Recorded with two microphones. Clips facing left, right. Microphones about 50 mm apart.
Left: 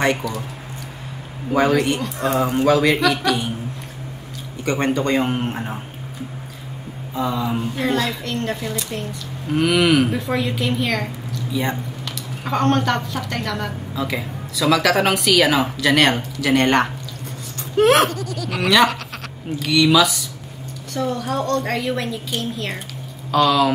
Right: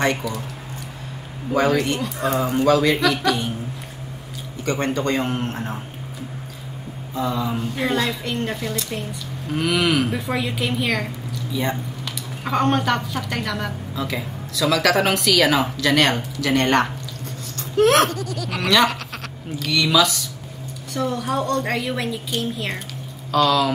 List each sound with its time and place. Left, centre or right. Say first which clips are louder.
1.5 s speech: left 2 dB; centre
4.6 s a man's voice: left 2 dB; centre
7.2 s a man's voice: left 1 dB; centre